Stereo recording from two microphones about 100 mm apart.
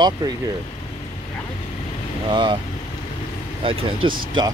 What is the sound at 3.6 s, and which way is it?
Speech, 60° right (ahead or behind).